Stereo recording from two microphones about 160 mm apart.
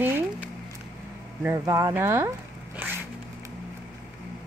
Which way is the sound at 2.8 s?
10° right (ahead or behind).